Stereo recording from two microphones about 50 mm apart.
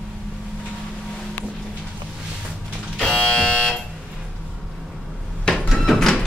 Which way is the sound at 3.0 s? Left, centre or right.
Left.